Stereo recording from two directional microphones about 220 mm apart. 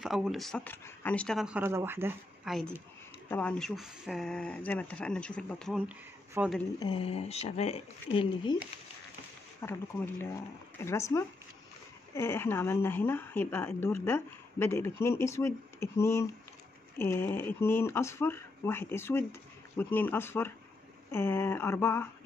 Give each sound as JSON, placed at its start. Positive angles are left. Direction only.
{"t": 0.0, "sound": "speech", "side_deg": 0}
{"t": 3.3, "sound": "speech", "side_deg": 5}
{"t": 6.8, "sound": "speech", "side_deg": 25}
{"t": 9.6, "sound": "speech", "side_deg": 15}
{"t": 10.8, "sound": "speech", "side_deg": 10}